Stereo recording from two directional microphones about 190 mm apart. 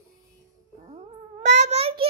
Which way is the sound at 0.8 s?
40° right (ahead or behind).